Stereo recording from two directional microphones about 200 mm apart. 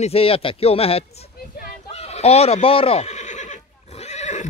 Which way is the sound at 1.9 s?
30° left (ahead or behind).